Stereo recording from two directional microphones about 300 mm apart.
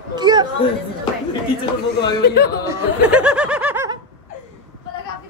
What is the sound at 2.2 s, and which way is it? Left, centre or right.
Speech, left.